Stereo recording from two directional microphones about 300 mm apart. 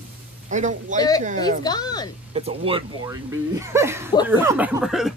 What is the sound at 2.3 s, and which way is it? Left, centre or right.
Speech, centre.